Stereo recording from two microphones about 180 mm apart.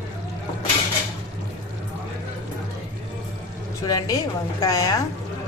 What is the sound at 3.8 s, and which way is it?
A woman's voice, 20° left (ahead or behind).